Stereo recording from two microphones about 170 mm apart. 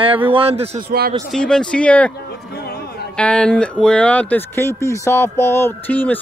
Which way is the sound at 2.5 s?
70° left (ahead or behind).